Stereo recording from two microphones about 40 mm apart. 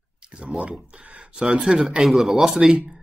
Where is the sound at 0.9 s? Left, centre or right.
Right.